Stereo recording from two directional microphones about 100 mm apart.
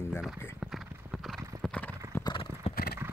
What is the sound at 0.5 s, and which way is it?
Clip-clop, 5° right (ahead or behind).